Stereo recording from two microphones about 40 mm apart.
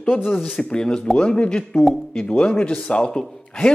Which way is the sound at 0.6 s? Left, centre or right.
Left.